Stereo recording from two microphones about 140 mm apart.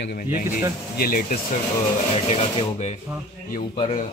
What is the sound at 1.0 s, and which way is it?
Speech, 85° left.